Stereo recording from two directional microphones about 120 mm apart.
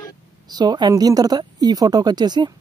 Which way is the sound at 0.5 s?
35° right (ahead or behind).